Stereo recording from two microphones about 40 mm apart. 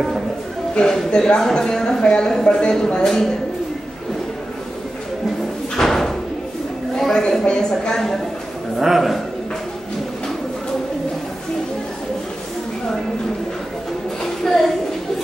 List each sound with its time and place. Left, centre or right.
0.8 s a man's voice: centre
5.8 s slam: centre
7.0 s a sound: centre
7.7 s a man's voice: centre
8.7 s a man's voice: centre
14.4 s a sound: centre